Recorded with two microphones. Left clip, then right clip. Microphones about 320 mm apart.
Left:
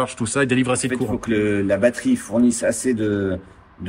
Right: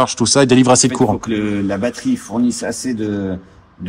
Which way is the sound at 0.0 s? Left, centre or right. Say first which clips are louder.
Right 8 dB; centre.